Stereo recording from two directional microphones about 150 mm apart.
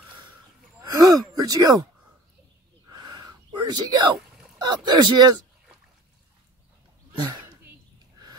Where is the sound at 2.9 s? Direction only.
25° right (ahead or behind).